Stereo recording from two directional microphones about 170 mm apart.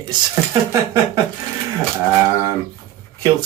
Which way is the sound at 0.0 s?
20° right (ahead or behind).